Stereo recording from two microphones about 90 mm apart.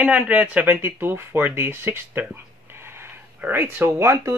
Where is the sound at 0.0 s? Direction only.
15° right (ahead or behind).